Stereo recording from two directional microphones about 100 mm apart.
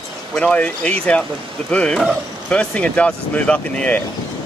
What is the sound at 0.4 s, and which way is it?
Speech, 10° left (ahead or behind).